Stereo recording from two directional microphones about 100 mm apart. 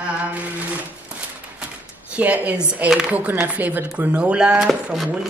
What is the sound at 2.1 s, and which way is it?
Speech, 15° right (ahead or behind).